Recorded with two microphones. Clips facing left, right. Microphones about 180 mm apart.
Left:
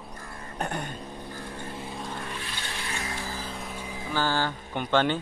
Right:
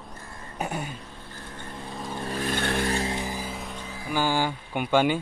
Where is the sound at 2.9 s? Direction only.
30° right (ahead or behind).